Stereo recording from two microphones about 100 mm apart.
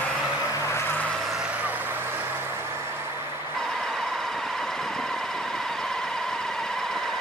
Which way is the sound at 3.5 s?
5° left (ahead or behind).